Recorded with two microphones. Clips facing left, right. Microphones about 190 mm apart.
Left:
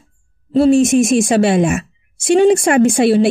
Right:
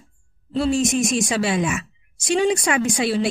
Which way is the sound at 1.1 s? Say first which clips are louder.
Left 9 dB; 55° left (ahead or behind).